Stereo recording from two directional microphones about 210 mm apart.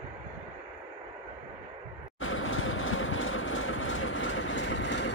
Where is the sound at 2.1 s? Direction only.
70° left (ahead or behind).